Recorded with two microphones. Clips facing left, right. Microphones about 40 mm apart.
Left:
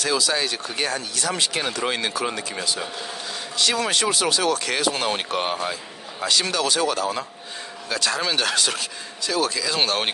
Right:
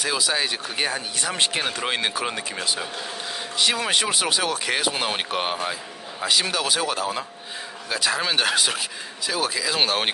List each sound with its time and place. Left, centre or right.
0.0 s speech: centre
3.5 s speech: centre